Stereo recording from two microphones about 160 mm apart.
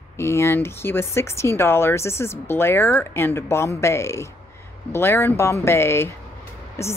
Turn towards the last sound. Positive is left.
turn(degrees=15)  # may be behind; listen again after turning